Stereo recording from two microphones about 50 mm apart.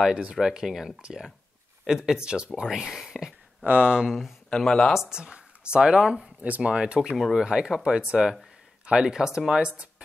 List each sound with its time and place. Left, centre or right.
0.1 s speech: centre
2.7 s speech: centre
3.6 s speech: right
3.9 s speech: centre
4.5 s speech: centre
4.9 s speech: centre
6.4 s speech: right
6.7 s speech: centre